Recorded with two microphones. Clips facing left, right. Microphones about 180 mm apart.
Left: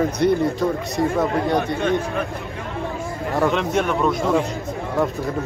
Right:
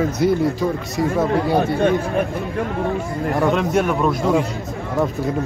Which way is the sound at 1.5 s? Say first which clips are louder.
Right 3 dB; 25° right (ahead or behind).